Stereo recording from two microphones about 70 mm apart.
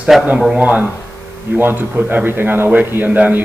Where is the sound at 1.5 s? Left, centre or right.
Right.